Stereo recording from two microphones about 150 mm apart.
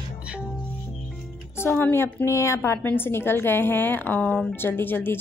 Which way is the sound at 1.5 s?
15° left (ahead or behind).